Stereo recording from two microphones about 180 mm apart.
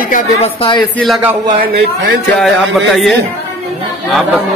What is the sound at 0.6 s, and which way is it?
Speech, 25° left (ahead or behind).